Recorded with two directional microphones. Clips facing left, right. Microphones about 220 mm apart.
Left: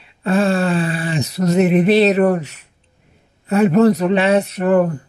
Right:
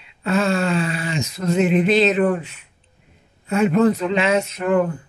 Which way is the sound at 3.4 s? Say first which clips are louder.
Left 4 dB; 35° left (ahead or behind).